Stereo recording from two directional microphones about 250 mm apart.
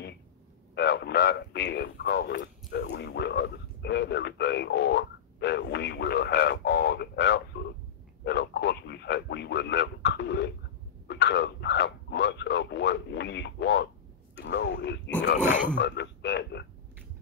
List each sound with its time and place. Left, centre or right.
0.7 s speech: left